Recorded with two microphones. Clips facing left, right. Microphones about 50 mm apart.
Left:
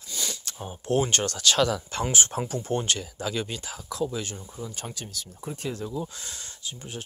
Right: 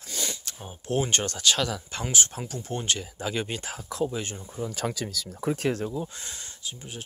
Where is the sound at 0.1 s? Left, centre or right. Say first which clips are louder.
Right 1 dB; right.